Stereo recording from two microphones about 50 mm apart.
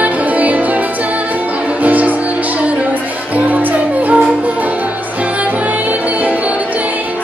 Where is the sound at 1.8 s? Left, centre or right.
Right.